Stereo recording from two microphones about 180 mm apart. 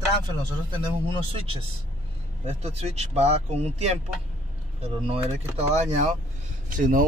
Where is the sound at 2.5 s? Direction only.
35° right (ahead or behind).